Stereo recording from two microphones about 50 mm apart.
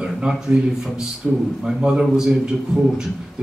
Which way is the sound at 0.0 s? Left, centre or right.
Centre.